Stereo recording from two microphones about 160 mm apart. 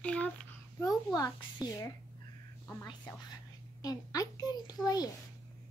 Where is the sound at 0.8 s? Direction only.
20° left (ahead or behind).